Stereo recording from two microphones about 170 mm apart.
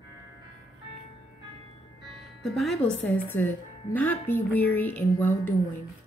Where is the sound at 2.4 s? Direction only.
Centre (ahead or behind).